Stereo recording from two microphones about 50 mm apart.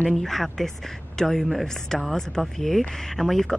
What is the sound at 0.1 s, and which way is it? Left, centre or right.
Speech, centre.